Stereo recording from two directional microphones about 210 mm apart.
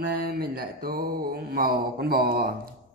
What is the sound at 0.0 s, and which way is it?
Mantra, 45° right (ahead or behind).